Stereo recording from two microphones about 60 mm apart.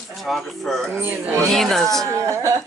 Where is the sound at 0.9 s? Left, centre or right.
Right.